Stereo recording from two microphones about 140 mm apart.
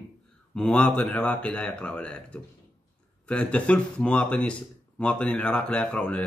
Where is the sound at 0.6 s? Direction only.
5° left (ahead or behind).